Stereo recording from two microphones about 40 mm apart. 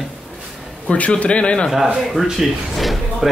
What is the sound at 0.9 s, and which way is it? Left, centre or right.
Speech, left.